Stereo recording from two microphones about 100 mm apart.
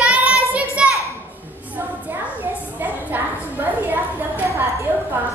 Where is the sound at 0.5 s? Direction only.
10° right (ahead or behind).